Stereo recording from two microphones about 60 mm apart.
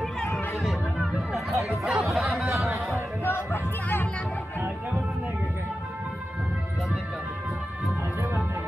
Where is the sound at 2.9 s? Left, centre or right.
Left.